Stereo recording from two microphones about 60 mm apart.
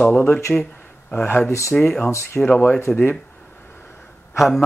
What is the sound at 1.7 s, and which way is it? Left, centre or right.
Speech, centre.